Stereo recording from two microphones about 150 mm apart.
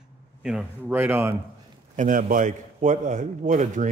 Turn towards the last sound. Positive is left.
turn(degrees=-55)  # may be behind; listen again after turning